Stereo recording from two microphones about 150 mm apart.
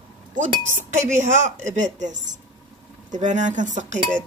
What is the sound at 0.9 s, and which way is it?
A woman's voice, 55° right (ahead or behind).